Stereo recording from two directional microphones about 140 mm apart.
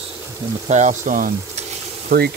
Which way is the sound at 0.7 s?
60° right (ahead or behind).